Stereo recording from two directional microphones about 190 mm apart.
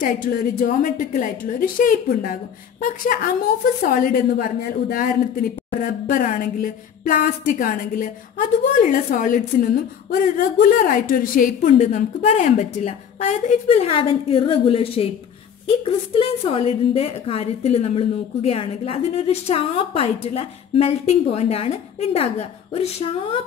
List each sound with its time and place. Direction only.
0.0 s a woman's voice: 50° left (ahead or behind); by 23.4 s 30° left (ahead or behind)